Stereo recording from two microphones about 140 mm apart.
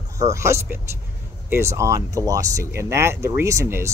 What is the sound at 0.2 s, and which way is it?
Speech, 20° right (ahead or behind).